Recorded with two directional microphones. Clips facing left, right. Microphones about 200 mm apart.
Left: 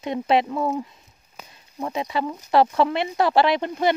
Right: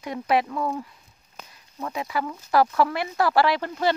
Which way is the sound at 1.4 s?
10° left (ahead or behind).